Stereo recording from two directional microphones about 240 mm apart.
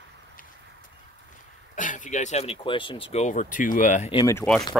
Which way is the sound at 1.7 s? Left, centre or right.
Left.